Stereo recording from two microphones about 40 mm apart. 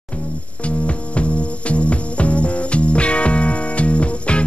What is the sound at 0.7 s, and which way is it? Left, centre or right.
Music, left.